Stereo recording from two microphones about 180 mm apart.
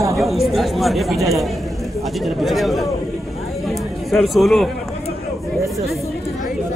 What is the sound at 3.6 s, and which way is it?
Chatter, centre (ahead or behind).